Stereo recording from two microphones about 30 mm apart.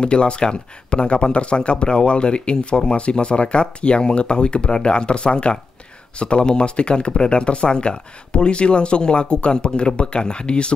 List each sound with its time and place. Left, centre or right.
0.0 s speech: left